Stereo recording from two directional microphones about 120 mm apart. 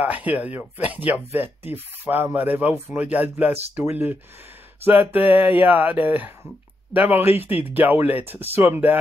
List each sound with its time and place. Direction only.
0.0 s speech: 15° right (ahead or behind)